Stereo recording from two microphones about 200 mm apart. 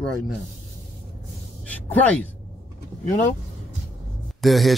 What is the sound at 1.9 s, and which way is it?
Speech, 5° left (ahead or behind).